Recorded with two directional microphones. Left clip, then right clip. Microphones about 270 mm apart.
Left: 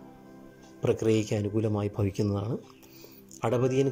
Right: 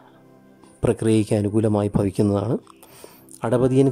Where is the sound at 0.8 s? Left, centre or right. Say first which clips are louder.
Right 6 dB; centre.